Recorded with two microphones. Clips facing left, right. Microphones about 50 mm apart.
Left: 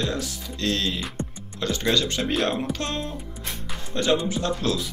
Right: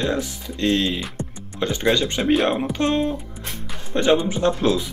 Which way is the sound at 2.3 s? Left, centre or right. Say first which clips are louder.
Right 7 dB; centre.